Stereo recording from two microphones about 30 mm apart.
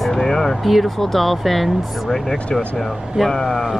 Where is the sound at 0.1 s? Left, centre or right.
Centre.